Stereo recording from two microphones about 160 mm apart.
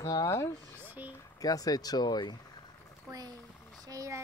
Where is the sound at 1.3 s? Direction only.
20° left (ahead or behind).